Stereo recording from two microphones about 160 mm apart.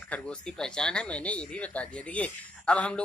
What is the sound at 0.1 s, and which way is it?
Speech, 5° left (ahead or behind).